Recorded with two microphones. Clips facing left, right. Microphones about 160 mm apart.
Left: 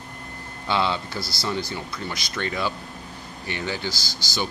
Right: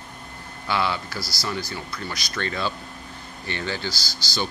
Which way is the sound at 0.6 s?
20° left (ahead or behind).